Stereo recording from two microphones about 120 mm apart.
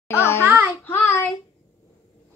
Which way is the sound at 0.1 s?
25° left (ahead or behind).